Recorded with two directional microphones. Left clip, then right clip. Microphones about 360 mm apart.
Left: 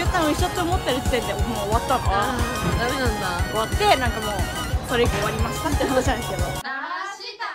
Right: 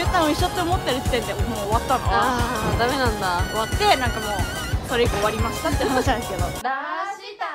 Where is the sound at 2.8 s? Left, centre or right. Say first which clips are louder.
Right 3 dB; centre.